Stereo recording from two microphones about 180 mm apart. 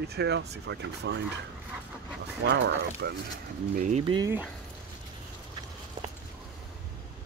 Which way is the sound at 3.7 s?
45° right (ahead or behind).